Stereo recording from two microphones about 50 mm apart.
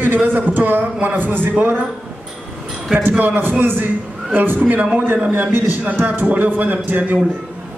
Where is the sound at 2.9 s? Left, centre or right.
Right.